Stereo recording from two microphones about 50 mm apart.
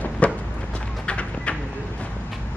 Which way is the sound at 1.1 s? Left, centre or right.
Left.